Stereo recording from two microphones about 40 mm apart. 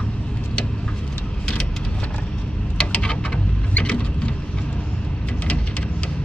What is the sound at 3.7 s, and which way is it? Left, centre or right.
Mechanisms, left.